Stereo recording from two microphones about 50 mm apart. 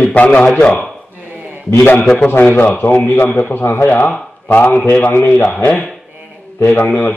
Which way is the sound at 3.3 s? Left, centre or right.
Left.